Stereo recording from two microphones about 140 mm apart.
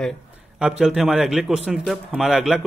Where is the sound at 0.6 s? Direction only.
5° right (ahead or behind).